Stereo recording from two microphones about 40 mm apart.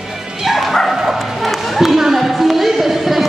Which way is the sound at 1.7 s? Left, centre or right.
Centre.